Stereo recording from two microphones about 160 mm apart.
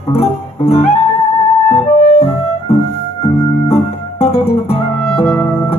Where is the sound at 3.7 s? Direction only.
40° left (ahead or behind).